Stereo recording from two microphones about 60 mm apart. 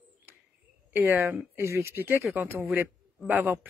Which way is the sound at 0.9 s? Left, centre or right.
Right.